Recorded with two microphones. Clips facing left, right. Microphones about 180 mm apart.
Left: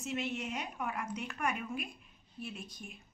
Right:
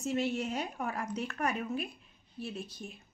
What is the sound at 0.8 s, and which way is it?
Speech, 45° right (ahead or behind).